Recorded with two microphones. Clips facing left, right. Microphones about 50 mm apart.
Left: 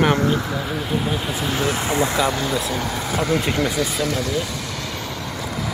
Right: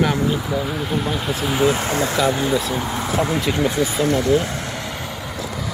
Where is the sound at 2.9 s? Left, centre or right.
Right.